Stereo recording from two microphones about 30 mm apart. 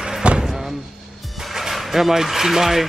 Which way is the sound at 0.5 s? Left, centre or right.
Centre.